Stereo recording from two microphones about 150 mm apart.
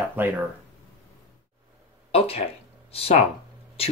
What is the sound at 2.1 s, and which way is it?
Speech, 40° left (ahead or behind).